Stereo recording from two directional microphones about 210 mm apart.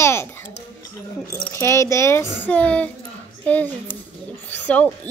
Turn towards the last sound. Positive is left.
turn(degrees=5)  # may be behind; listen again after turning